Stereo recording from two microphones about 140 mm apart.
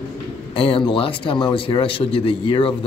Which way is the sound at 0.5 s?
40° left (ahead or behind).